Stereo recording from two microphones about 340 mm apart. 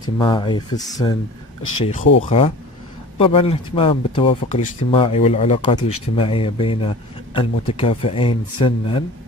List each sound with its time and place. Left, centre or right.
0.0 s speech: centre
2.2 s speech: centre
5.8 s speech: left
6.1 s speech: centre